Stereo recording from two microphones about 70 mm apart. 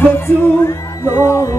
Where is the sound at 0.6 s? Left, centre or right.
Left.